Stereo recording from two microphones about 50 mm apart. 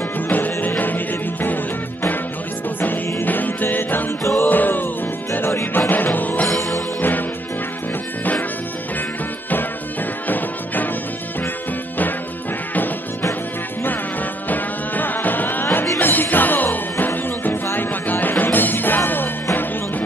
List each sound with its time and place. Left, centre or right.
0.3 s music: left
2.8 s music: left
4.2 s music: left
4.5 s music: left
10.2 s music: left
14.5 s music: left